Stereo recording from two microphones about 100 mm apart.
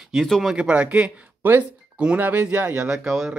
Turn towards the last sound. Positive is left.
turn(degrees=-5)  # may be behind; listen again after turning